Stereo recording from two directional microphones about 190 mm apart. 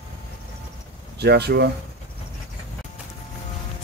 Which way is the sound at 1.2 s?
60° right (ahead or behind).